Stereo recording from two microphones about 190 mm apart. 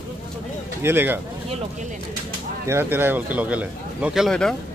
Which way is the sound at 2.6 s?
10° right (ahead or behind).